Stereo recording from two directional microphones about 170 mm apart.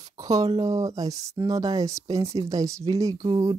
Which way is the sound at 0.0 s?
20° right (ahead or behind).